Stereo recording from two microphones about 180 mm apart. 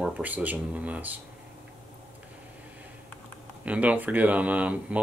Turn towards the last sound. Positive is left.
turn(degrees=-10)  # may be behind; listen again after turning